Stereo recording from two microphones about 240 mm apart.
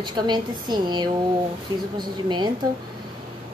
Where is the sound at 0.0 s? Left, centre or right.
Centre.